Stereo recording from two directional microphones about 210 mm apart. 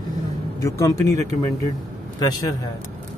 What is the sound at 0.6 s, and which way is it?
Speech, 15° left (ahead or behind).